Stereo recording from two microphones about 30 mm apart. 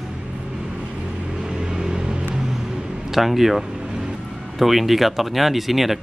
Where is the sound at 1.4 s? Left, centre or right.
Right.